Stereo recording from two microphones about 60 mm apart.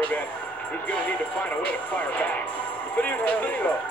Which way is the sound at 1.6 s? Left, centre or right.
Left.